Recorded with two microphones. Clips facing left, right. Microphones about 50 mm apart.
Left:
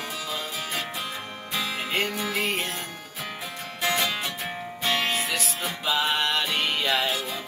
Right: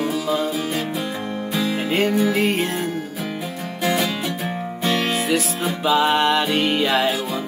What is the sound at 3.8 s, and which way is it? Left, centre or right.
Music, centre.